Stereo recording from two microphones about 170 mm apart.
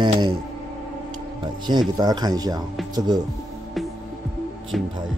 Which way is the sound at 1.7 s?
25° right (ahead or behind).